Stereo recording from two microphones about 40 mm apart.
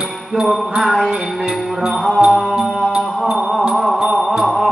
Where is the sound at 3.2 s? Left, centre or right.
Centre.